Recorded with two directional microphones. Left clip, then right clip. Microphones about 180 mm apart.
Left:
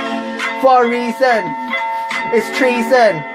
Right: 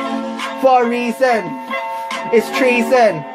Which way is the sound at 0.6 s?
20° right (ahead or behind).